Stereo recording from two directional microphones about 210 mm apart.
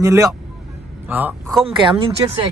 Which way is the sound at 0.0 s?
15° right (ahead or behind).